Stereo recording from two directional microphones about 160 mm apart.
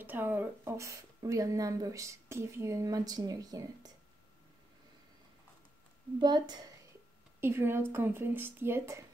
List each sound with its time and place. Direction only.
0.0 s speech: 10° right (ahead or behind)
6.1 s speech: 25° right (ahead or behind)
7.3 s a woman's voice: 15° right (ahead or behind)